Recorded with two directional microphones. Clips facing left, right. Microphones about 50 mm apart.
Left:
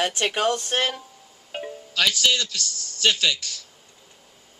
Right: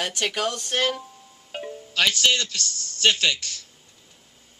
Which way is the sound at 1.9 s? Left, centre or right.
Right.